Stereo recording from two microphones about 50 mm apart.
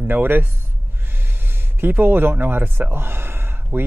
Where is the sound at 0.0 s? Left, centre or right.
Right.